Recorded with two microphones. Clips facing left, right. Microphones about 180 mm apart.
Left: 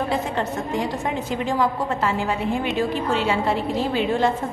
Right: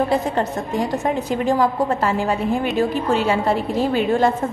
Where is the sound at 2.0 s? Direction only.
40° right (ahead or behind).